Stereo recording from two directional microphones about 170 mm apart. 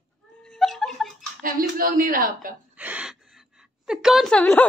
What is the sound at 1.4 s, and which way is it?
Speech, 55° right (ahead or behind).